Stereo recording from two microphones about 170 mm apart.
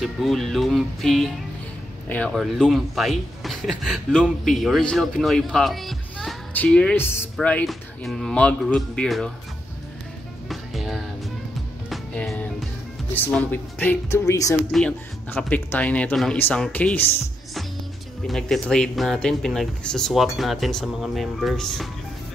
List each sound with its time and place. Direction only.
0.0 s a man's voice: centre (ahead or behind)
10.5 s music: centre (ahead or behind)
13.1 s speech: 10° left (ahead or behind)
14.7 s speech: 5° left (ahead or behind)
18.2 s a man's voice: centre (ahead or behind)